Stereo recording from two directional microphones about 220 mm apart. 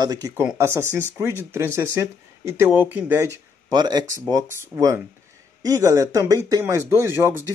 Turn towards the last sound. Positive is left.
turn(degrees=-10)  # may be behind; listen again after turning